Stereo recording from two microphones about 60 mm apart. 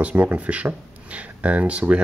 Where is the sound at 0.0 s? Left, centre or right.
Right.